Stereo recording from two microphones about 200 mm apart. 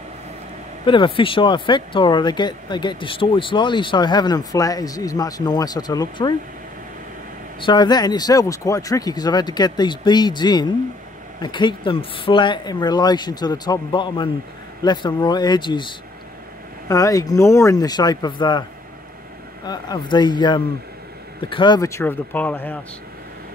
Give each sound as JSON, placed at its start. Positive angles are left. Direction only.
{"t": 0.8, "sound": "speech", "side_deg": 25}
{"t": 7.6, "sound": "speech", "side_deg": 20}
{"t": 16.9, "sound": "speech", "side_deg": 15}